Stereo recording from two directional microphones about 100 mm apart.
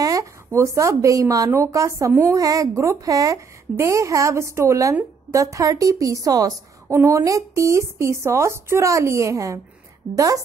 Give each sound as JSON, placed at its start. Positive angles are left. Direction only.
{"t": 0.0, "sound": "speech", "side_deg": -35}